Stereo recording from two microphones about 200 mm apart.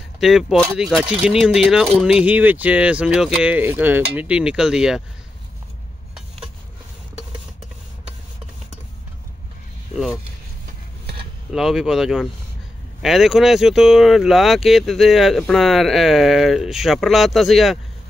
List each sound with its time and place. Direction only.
0.2 s speech: centre (ahead or behind)
11.5 s speech: centre (ahead or behind)